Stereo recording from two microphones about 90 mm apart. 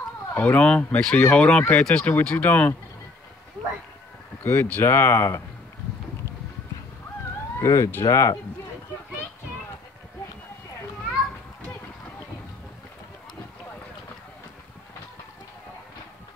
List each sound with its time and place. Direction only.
0.3 s speech: 15° left (ahead or behind)
4.4 s speech: 25° left (ahead or behind)
7.6 s speech: 35° left (ahead or behind)